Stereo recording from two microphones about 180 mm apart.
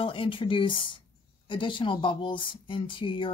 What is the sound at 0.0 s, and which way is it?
Speech, 30° left (ahead or behind).